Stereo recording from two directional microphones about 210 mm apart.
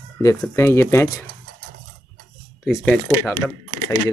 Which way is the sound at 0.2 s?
15° left (ahead or behind).